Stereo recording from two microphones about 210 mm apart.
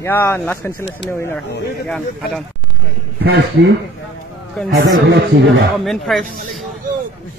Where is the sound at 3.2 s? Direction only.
50° right (ahead or behind).